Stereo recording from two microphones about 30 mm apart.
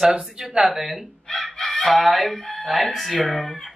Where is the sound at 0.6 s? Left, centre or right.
Centre.